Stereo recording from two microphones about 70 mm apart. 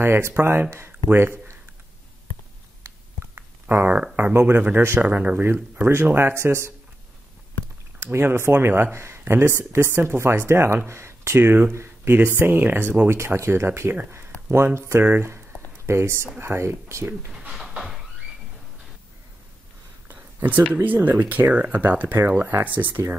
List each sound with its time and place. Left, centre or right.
0.0 s speech: right
0.7 s speech: right
3.6 s speech: right
4.2 s speech: right
5.4 s speech: right
8.1 s speech: right
15.0 s a sound: right
16.3 s speech: right
17.3 s a sound: centre
17.6 s a sound: centre
20.2 s a sound: right
20.7 s speech: right